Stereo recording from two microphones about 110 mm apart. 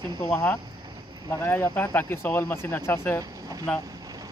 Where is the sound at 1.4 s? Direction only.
20° left (ahead or behind).